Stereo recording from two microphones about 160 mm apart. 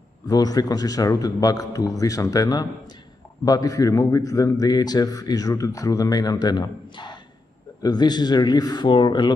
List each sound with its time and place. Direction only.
0.3 s a man's voice: 25° left (ahead or behind)